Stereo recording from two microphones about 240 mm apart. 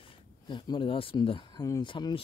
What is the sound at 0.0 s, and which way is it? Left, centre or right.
Speech, centre.